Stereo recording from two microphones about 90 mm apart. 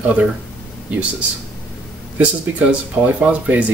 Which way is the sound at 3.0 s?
15° right (ahead or behind).